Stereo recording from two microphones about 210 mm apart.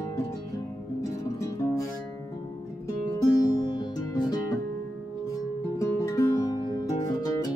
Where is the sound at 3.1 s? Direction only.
20° left (ahead or behind).